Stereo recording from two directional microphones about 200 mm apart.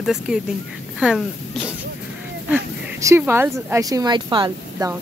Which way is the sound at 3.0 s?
10° right (ahead or behind).